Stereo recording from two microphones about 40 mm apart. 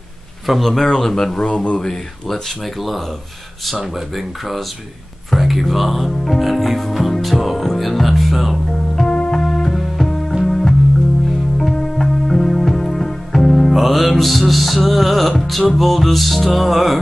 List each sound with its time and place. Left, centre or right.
0.5 s speech: centre
1.5 s speech: left
2.6 s music: centre
5.3 s speech: centre
6.4 s music: centre
8.9 s music: centre
13.7 s music: centre